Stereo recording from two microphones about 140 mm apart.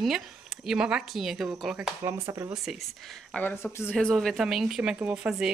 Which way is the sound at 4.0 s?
5° left (ahead or behind).